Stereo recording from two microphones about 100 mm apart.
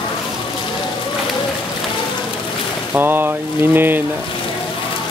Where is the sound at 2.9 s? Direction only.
20° right (ahead or behind).